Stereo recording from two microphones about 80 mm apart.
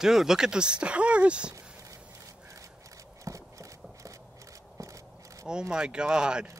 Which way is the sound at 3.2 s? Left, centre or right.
Right.